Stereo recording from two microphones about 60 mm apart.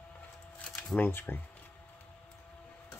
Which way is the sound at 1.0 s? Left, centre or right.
Left.